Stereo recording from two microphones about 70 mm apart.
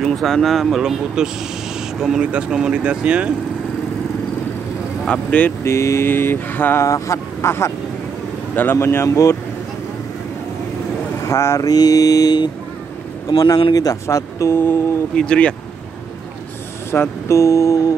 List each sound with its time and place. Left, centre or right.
0.0 s speech: centre
5.0 s speech: centre
5.6 s mantra: left
6.0 s speech: left
6.8 s mantra: left
8.7 s mantra: left
11.2 s speech: left
11.7 s mantra: left
13.3 s speech: left
14.0 s mantra: left
15.1 s speech: centre
16.9 s mantra: left